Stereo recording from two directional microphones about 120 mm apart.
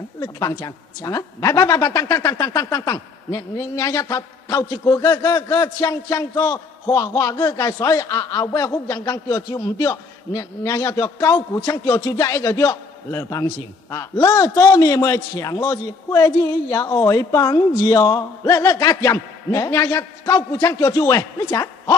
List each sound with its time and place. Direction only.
0.2 s a woman's voice: 30° left (ahead or behind)